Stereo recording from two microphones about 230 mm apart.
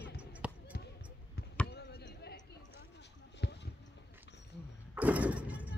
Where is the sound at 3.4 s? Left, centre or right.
Left.